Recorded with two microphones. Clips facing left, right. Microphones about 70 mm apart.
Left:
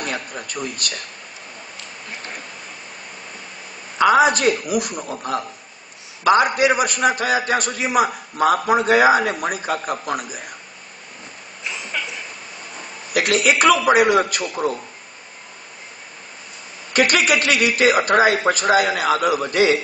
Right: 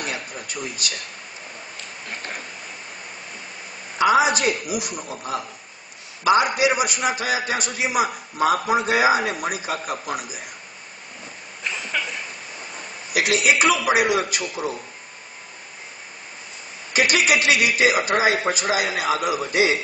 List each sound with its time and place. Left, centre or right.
0.0 s speech: left
4.0 s a man's voice: left
11.6 s a sound: right
13.1 s a man's voice: left
16.9 s a man's voice: left